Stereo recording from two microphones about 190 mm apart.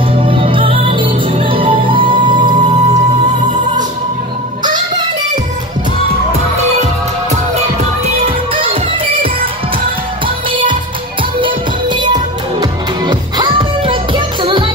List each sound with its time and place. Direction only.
0.2 s music: 30° right (ahead or behind)
4.6 s music: 25° right (ahead or behind)
10.2 s music: 25° right (ahead or behind)